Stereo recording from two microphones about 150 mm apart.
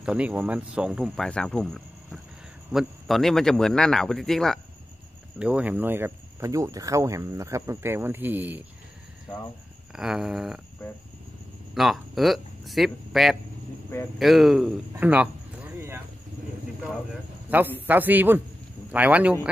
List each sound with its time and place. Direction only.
0.0 s speech: 5° right (ahead or behind)
5.4 s speech: 10° right (ahead or behind)
9.9 s speech: 5° right (ahead or behind)
11.7 s speech: centre (ahead or behind)
15.0 s a sound: 10° right (ahead or behind)
17.5 s speech: 10° right (ahead or behind)